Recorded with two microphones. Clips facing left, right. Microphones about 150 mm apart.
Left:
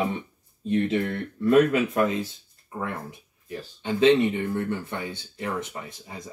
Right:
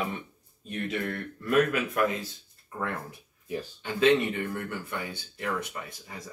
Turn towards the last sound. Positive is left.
turn(degrees=25)  # may be behind; listen again after turning